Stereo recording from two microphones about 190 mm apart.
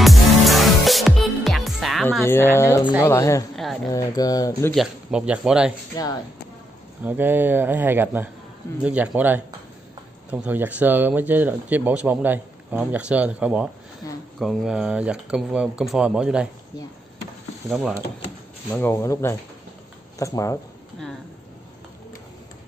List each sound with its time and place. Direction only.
0.0 s music: centre (ahead or behind)
2.0 s speech: 10° left (ahead or behind)
3.9 s a sound: 20° left (ahead or behind)
4.7 s speech: 5° right (ahead or behind)
6.0 s a sound: 20° left (ahead or behind)
7.0 s speech: 10° right (ahead or behind)
17.6 s speech: centre (ahead or behind)
18.7 s speech: 10° left (ahead or behind)